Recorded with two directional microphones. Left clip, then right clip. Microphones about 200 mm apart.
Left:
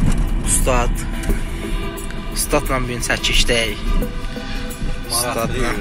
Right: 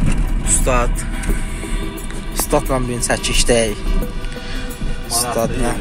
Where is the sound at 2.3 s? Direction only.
30° right (ahead or behind).